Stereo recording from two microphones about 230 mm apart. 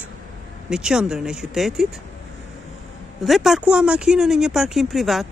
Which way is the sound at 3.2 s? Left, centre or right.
Centre.